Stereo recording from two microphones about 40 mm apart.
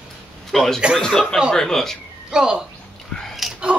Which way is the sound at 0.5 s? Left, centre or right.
Centre.